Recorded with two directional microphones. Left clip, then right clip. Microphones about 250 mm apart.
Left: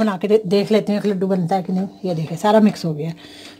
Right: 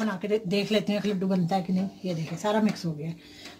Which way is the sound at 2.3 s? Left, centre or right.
Left.